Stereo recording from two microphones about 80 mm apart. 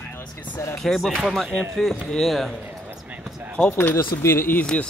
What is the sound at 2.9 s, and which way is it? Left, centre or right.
Basketball bounce, centre.